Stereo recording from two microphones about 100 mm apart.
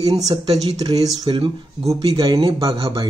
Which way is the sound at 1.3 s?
75° right (ahead or behind).